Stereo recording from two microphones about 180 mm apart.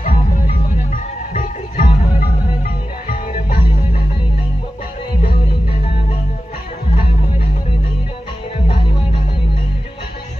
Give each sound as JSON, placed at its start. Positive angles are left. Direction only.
{"t": 1.3, "sound": "music", "side_deg": 45}